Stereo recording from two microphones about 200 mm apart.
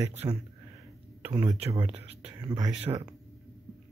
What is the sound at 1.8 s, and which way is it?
Speech, 30° right (ahead or behind).